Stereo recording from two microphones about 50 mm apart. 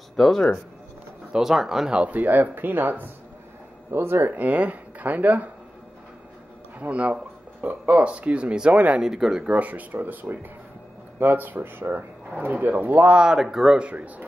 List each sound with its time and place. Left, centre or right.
0.1 s speech: centre
1.3 s speech: centre
1.9 s speech: right
2.1 s speech: right
3.9 s speech: right
4.3 s speech: right
6.8 s speech: right
8.0 s speech: right
9.0 s speech: centre
9.5 s speech: right
13.3 s speech: centre
13.8 s speech: right